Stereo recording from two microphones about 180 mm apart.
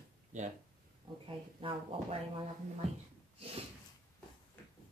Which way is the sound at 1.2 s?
30° right (ahead or behind).